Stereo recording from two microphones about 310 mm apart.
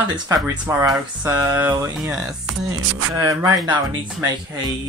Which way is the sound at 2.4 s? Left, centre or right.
Right.